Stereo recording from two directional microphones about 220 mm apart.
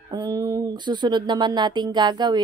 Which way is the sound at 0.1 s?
15° right (ahead or behind).